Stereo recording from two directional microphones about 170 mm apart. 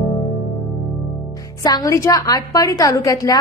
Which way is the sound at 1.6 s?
20° left (ahead or behind).